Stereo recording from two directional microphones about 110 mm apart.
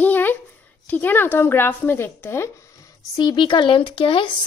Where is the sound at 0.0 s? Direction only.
15° left (ahead or behind).